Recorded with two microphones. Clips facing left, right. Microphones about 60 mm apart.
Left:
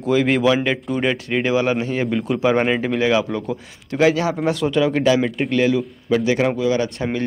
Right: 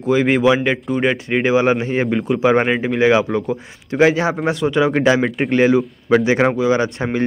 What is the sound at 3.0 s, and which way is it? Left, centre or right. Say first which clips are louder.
Speech: right 6 dB; right.